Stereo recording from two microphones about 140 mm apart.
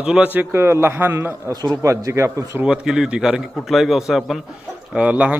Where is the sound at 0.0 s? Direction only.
10° right (ahead or behind).